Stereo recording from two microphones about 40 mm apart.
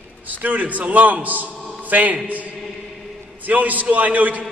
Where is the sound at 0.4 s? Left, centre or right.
Right.